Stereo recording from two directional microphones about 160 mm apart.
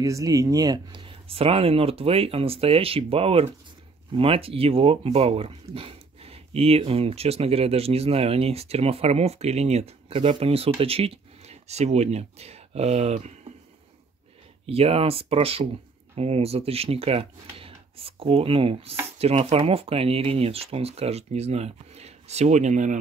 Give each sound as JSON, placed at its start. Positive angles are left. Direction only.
{"t": 0.0, "sound": "speech", "side_deg": -20}
{"t": 14.7, "sound": "speech", "side_deg": -40}